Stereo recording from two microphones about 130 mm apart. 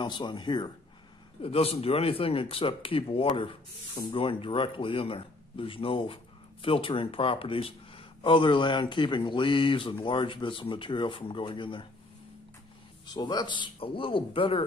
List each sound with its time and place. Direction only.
0.0 s speech: 35° left (ahead or behind)
1.4 s speech: 50° left (ahead or behind)
13.1 s speech: 30° left (ahead or behind)